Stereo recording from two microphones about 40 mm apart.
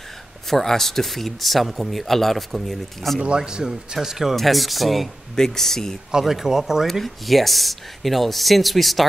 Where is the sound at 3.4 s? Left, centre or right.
Centre.